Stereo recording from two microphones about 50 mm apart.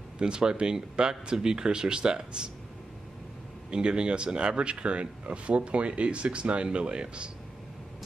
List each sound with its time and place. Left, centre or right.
0.2 s speech: centre
3.7 s speech: centre